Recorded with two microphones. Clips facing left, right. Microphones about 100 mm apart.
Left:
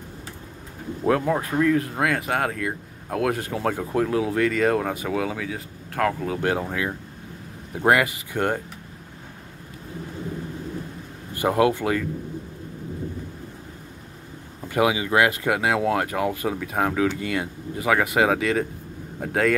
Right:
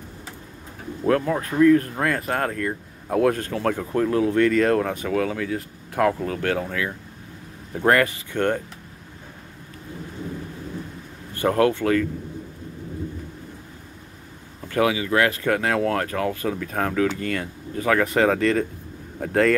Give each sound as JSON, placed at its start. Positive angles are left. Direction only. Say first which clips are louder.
{"t": 1.0, "sound": "speech", "louder": "even", "side_deg": 15}
{"t": 6.4, "sound": "speech", "louder": "left 1 dB", "side_deg": 20}
{"t": 11.3, "sound": "speech", "louder": "even", "side_deg": 15}
{"t": 14.7, "sound": "speech", "louder": "even", "side_deg": 15}